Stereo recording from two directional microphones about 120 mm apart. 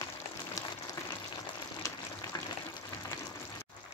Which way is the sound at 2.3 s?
30° left (ahead or behind).